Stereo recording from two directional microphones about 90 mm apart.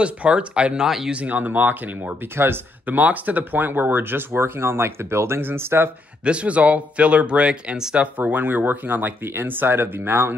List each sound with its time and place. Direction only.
0.0 s speech: 15° right (ahead or behind)
1.1 s speech: 15° right (ahead or behind)
6.2 s speech: 15° right (ahead or behind)